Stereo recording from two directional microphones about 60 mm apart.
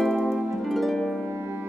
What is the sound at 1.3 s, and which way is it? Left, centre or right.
Music, right.